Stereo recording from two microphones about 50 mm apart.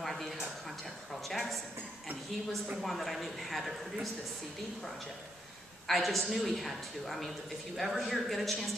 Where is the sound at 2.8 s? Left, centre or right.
Centre.